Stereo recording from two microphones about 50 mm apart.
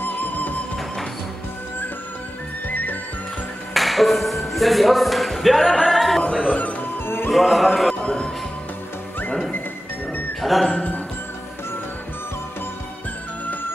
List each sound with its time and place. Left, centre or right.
0.0 s music: left
2.7 s music: left
3.7 s speech: centre
5.8 s music: centre
7.2 s music: centre
8.0 s music: centre
10.4 s speech: centre